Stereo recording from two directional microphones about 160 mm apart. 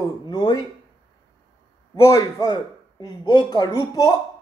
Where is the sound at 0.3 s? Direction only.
25° left (ahead or behind).